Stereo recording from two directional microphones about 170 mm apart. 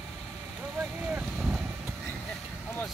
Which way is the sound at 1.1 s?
5° right (ahead or behind).